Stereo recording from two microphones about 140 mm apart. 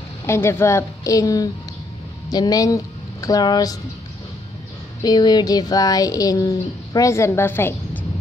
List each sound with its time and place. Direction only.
0.3 s speech: 20° left (ahead or behind)
5.0 s speech: 30° left (ahead or behind)